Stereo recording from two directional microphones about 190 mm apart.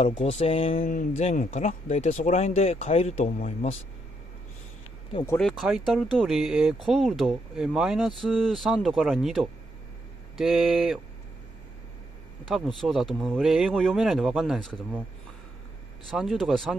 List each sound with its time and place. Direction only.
0.0 s a sound: 30° left (ahead or behind)
1.1 s speech: 40° left (ahead or behind)
5.1 s a sound: 20° left (ahead or behind)
5.4 s speech: centre (ahead or behind)
12.4 s speech: centre (ahead or behind)
16.1 s speech: centre (ahead or behind)